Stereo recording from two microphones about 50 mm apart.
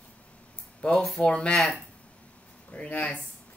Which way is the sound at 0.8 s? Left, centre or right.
Left.